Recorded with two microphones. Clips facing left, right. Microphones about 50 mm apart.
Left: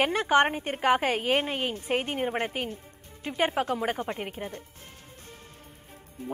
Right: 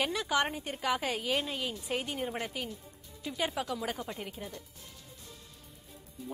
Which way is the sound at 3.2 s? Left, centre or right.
Left.